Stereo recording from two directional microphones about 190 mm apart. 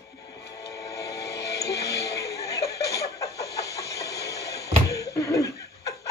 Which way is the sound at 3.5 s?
15° left (ahead or behind).